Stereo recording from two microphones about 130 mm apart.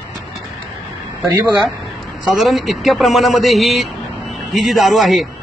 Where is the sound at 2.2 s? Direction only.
Centre (ahead or behind).